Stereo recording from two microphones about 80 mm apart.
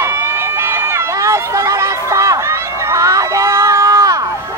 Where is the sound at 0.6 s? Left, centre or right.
Right.